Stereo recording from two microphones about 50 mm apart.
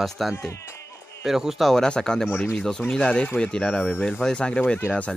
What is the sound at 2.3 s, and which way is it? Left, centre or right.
Speech, left.